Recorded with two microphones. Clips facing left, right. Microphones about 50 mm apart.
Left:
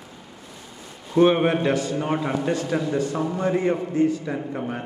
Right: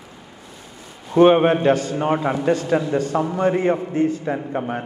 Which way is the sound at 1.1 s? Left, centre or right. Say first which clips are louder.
Right 4 dB; right.